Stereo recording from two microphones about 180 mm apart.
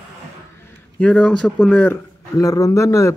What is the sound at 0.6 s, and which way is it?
A man's voice, 10° left (ahead or behind).